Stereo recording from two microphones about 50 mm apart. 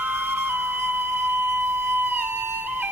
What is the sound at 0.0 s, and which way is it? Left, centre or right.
Flute, right.